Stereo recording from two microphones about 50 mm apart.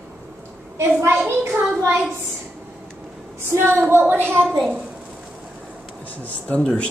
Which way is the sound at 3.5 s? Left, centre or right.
Right.